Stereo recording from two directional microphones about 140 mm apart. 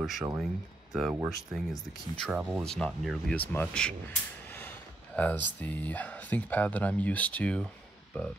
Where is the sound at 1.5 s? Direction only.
Centre (ahead or behind).